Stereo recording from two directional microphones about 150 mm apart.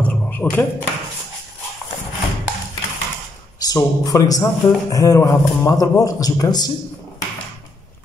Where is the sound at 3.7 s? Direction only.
25° left (ahead or behind).